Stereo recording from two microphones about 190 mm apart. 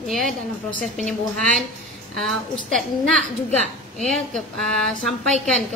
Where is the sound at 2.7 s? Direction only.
5° left (ahead or behind).